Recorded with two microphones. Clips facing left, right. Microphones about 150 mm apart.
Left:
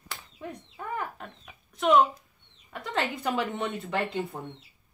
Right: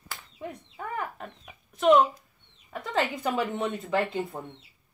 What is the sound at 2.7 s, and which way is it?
Speech, centre (ahead or behind).